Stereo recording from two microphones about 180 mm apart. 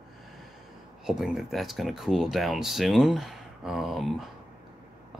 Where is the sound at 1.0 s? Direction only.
Centre (ahead or behind).